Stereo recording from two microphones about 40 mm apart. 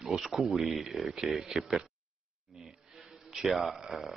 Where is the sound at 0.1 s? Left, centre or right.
Centre.